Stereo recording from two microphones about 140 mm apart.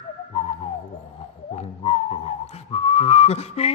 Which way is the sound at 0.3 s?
45° left (ahead or behind).